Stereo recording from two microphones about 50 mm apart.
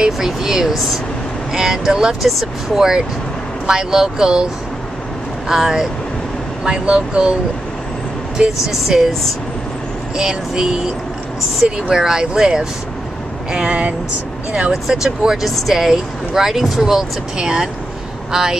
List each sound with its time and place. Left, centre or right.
0.0 s speech: centre
5.5 s speech: centre
8.4 s speech: centre
8.7 s speech: centre
10.1 s speech: centre
11.9 s speech: centre
13.7 s speech: right
14.7 s speech: centre